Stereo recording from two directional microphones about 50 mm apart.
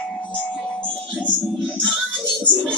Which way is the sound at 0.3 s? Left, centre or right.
Left.